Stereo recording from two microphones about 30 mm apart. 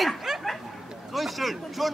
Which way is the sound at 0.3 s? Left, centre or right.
Centre.